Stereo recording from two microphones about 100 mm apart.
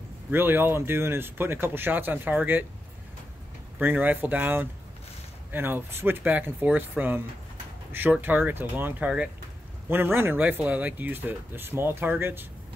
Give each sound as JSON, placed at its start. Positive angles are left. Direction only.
{"t": 0.3, "sound": "speech", "side_deg": -20}
{"t": 3.8, "sound": "speech", "side_deg": -15}